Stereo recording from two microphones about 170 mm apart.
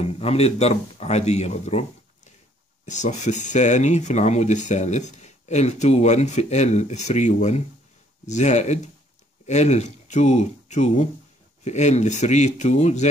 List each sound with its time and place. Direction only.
0.0 s speech: 35° left (ahead or behind)